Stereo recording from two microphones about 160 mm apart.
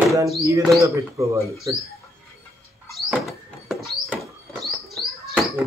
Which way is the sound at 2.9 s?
Centre (ahead or behind).